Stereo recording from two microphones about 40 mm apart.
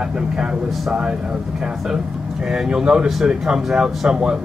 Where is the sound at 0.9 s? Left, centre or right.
Right.